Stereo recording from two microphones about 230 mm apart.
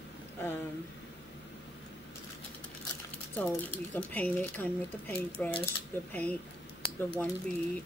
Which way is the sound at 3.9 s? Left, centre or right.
Centre.